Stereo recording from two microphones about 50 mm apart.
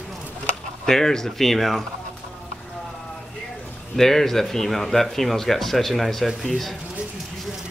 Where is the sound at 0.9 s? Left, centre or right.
Centre.